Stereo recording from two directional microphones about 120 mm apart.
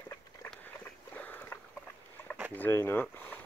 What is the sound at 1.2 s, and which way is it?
Boat, 15° left (ahead or behind).